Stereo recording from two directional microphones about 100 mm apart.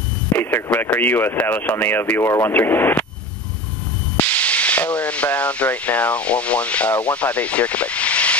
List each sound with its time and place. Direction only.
0.4 s speech: 20° left (ahead or behind)
4.2 s speech: 15° left (ahead or behind)